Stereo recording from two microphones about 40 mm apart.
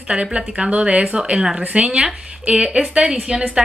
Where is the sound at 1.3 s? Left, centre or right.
Centre.